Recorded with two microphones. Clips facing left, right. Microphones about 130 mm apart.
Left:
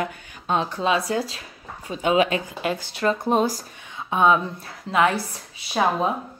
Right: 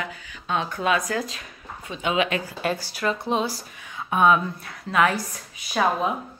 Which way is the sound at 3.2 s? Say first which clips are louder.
Left 4 dB; 45° left (ahead or behind).